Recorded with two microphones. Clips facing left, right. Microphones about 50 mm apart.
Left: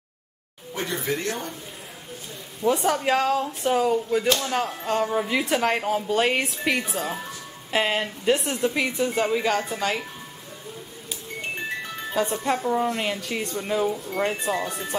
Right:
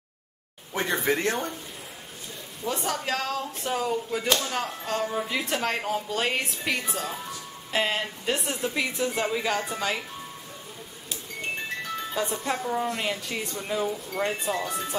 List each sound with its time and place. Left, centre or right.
0.7 s speech: right
2.7 s speech: centre
12.1 s speech: centre